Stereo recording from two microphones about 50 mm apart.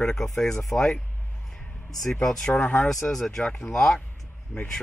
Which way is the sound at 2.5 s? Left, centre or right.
Left.